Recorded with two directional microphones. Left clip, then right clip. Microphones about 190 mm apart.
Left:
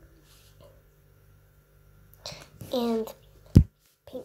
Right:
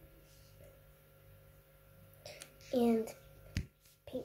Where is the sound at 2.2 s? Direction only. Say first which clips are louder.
Left 10 dB; 15° left (ahead or behind).